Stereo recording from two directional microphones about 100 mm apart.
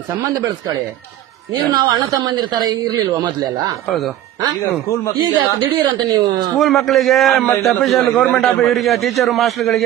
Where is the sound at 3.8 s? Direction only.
Centre (ahead or behind).